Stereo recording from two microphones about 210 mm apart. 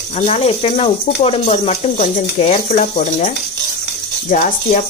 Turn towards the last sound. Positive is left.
turn(degrees=35)  # may be behind; listen again after turning